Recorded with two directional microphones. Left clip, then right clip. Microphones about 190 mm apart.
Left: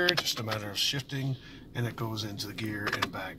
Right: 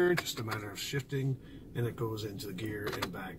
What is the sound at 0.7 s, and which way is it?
Speech, 45° left (ahead or behind).